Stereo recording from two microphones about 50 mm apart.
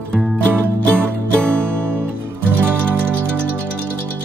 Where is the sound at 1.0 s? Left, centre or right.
Right.